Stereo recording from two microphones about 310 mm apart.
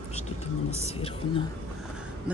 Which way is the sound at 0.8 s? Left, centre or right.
Centre.